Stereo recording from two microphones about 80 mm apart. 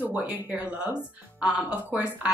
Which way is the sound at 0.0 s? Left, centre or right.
Centre.